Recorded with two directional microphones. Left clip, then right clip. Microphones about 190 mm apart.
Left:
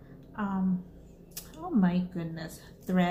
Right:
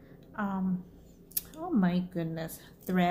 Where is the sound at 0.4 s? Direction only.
50° right (ahead or behind).